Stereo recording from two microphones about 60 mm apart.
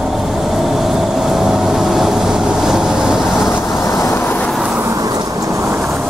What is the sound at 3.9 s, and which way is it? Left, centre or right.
Vehicle, left.